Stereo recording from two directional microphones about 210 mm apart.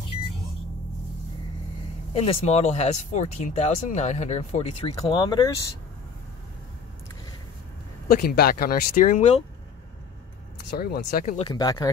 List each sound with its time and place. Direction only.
2.1 s speech: 30° left (ahead or behind)
8.1 s speech: 45° left (ahead or behind)
10.7 s speech: 50° left (ahead or behind)
11.3 s speech: 20° left (ahead or behind)